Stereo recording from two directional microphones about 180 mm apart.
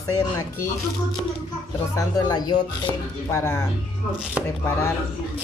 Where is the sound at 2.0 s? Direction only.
20° left (ahead or behind).